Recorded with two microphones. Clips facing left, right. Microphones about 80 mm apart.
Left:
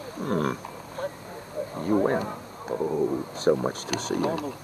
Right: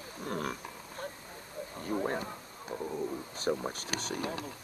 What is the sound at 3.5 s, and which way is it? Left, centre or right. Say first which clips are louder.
Speech: left 10 dB; left.